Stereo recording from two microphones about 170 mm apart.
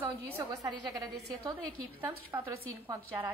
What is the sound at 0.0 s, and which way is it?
A woman's voice, 15° right (ahead or behind).